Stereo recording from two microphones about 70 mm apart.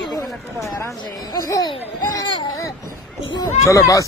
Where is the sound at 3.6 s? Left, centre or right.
Left.